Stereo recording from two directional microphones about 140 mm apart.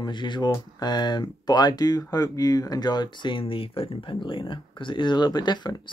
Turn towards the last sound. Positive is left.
turn(degrees=30)  # may be behind; listen again after turning